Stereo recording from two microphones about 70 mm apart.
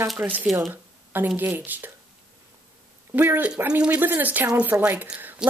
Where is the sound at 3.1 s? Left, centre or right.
Right.